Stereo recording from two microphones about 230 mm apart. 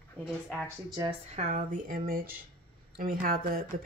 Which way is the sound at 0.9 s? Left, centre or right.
Right.